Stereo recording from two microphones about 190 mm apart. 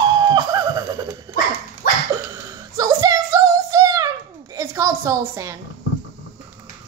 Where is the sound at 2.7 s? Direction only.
20° right (ahead or behind).